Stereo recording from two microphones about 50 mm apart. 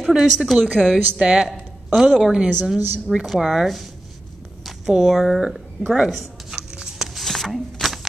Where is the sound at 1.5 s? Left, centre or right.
Centre.